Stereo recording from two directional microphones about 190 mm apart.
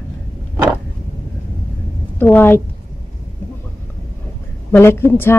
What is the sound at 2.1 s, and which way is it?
Speech, 10° left (ahead or behind).